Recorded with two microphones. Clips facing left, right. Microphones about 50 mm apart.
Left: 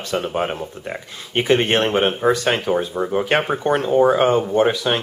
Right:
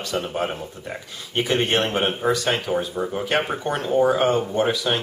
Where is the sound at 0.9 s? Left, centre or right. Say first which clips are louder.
Left 3 dB; left.